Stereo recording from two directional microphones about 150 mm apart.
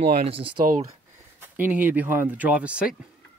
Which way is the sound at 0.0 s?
45° right (ahead or behind).